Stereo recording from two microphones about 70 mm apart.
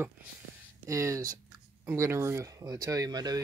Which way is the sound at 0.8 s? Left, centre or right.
Right.